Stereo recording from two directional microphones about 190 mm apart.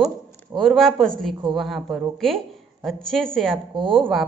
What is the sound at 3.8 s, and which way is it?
Speech, 25° right (ahead or behind).